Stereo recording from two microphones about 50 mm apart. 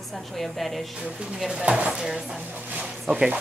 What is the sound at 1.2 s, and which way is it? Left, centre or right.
Speech, centre.